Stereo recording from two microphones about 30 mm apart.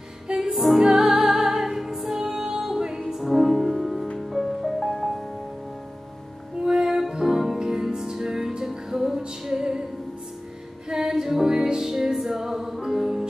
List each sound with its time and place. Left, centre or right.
0.3 s music: right; by 5.2 s centre
6.6 s music: centre
10.9 s music: centre